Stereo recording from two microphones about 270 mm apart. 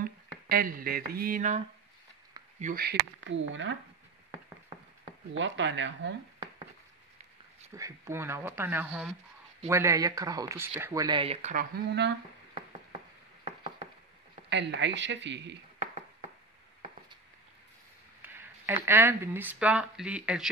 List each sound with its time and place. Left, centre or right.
0.5 s speech: right
2.6 s speech: right
5.4 s speech: right
7.7 s speech: centre; by 12.2 s right
14.5 s speech: right
18.2 s speech: centre